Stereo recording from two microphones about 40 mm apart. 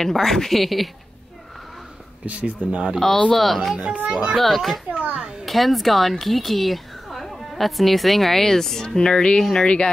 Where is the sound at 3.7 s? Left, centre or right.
Right.